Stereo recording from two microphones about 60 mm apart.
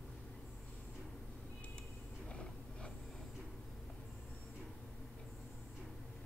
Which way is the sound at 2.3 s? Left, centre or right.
Centre.